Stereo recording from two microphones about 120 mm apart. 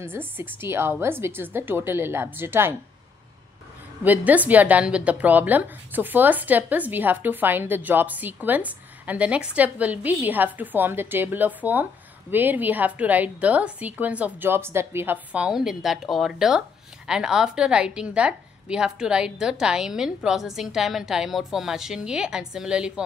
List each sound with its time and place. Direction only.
0.0 s a woman's voice: 20° right (ahead or behind)
4.0 s a woman's voice: 15° right (ahead or behind)